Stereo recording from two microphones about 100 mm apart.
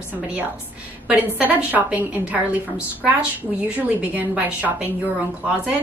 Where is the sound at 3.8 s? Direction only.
15° right (ahead or behind).